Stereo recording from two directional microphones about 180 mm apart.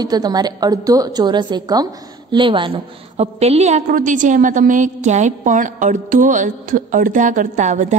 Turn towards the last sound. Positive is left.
turn(degrees=-45)  # may be behind; listen again after turning